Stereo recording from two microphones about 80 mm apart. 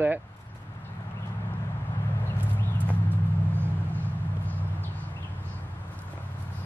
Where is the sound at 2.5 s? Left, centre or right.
Left.